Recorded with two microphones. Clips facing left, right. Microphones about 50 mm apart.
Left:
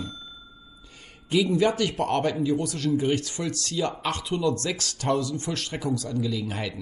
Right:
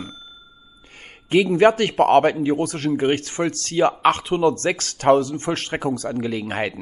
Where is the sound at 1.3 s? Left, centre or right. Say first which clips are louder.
Right 7 dB; right.